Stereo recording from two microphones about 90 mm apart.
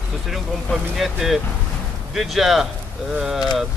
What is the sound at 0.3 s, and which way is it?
Speech, centre (ahead or behind).